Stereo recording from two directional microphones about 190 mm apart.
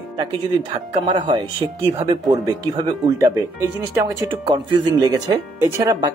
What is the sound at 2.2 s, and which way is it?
Speech, 20° right (ahead or behind).